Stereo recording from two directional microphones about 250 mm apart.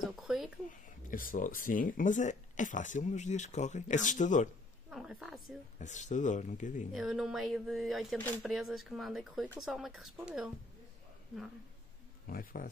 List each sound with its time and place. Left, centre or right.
0.1 s speech: centre
0.8 s speech: left
4.8 s a woman's voice: centre
5.8 s speech: left
6.9 s speech: centre
12.3 s speech: left